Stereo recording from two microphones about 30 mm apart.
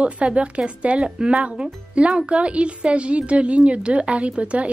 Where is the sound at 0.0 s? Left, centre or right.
Right.